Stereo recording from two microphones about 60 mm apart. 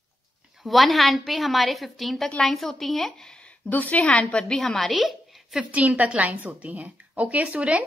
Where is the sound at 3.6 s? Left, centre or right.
Left.